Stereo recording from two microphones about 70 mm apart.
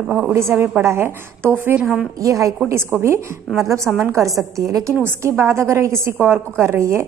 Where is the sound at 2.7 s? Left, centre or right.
Right.